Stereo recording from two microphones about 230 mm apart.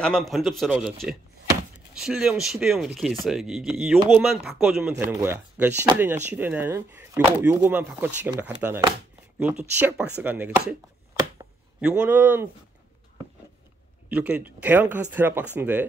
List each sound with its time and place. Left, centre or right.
0.0 s speech: centre
4.8 s speech: centre
10.7 s a sound: centre
14.0 s speech: centre